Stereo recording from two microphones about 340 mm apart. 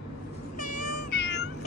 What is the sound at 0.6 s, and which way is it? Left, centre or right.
Cat, left.